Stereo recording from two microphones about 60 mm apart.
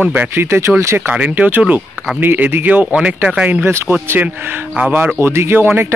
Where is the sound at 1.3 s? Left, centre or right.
Right.